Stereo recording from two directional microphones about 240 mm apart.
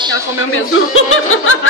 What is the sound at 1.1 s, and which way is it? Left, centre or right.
Snicker, left.